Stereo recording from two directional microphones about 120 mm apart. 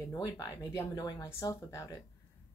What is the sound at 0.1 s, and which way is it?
Speech, 30° left (ahead or behind).